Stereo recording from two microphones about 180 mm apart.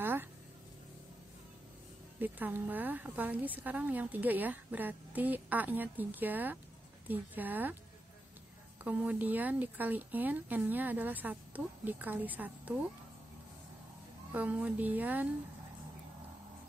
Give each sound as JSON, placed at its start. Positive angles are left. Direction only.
{"t": 0.0, "sound": "a sound", "side_deg": -10}
{"t": 2.1, "sound": "a woman's voice", "side_deg": -10}
{"t": 8.8, "sound": "a woman's voice", "side_deg": -10}
{"t": 14.3, "sound": "a woman's voice", "side_deg": -10}